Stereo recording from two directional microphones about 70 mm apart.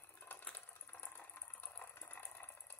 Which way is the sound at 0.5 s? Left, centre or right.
Left.